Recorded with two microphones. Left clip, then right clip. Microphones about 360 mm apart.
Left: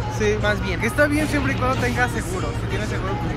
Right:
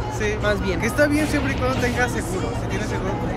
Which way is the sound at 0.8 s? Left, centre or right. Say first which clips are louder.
Even; centre.